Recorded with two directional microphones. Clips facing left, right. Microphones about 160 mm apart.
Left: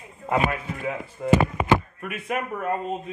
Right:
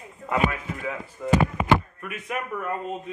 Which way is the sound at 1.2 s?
50° left (ahead or behind).